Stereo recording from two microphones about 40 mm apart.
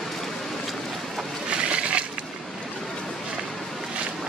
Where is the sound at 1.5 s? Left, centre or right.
Right.